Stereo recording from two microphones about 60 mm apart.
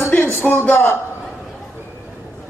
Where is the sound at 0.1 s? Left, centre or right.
Left.